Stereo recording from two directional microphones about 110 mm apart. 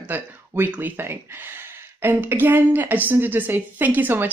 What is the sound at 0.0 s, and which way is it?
Speech, 15° right (ahead or behind).